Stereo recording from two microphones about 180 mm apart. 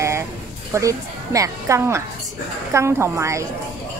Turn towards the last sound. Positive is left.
turn(degrees=-15)  # may be behind; listen again after turning